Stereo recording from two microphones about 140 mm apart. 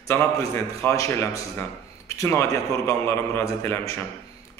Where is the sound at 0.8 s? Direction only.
20° left (ahead or behind).